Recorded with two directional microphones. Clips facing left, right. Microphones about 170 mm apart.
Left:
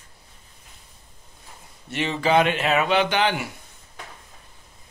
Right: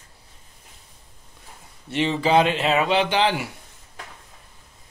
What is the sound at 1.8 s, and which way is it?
Speech, 30° right (ahead or behind).